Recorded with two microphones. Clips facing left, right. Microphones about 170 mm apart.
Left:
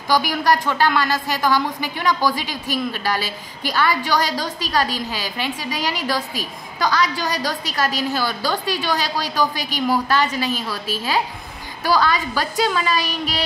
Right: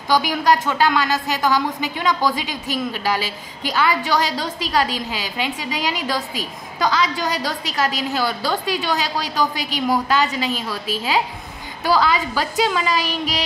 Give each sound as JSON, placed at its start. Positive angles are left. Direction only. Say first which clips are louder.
{"t": 0.1, "sound": "a woman's voice", "louder": "right 1 dB", "side_deg": -20}